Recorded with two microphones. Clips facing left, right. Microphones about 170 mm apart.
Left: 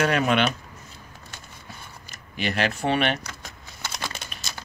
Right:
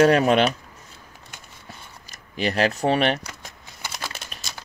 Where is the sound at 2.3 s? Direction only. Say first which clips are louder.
Right 4 dB; 35° right (ahead or behind).